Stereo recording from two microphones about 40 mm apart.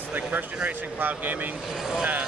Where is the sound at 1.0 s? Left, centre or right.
Right.